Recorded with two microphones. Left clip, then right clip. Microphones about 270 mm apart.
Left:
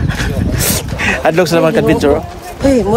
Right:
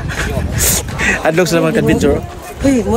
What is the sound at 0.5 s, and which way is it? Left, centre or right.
Speech, centre.